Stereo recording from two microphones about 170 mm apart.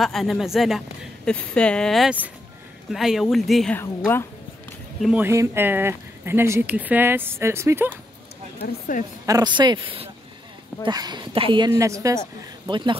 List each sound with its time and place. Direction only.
0.0 s speech: centre (ahead or behind)
3.7 s a woman's voice: 10° left (ahead or behind)
5.0 s speech: 10° right (ahead or behind)
8.5 s speech: 55° left (ahead or behind)
9.2 s speech: 20° right (ahead or behind)
11.8 s speech: 20° right (ahead or behind)